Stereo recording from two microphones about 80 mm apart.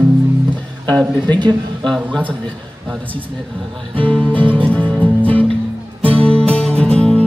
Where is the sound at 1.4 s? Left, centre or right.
Right.